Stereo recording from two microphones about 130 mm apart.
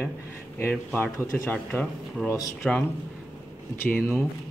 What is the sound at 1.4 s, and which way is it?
Speech, 10° left (ahead or behind).